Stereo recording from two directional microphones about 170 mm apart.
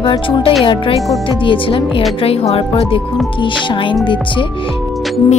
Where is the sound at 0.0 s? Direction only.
30° left (ahead or behind).